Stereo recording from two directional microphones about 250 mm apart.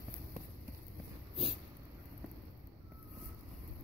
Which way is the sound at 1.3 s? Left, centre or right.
Right.